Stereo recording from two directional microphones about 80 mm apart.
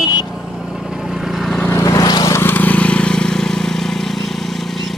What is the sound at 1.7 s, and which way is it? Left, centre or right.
Vehicle, left.